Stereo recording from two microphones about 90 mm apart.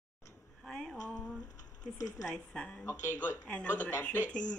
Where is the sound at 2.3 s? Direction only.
10° left (ahead or behind).